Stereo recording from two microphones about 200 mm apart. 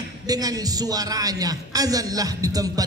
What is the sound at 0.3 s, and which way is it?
A man's voice, 20° right (ahead or behind).